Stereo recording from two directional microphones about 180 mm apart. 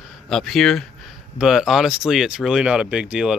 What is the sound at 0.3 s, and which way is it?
Speech, centre (ahead or behind).